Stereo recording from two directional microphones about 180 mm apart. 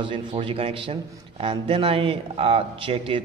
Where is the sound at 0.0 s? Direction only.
25° right (ahead or behind).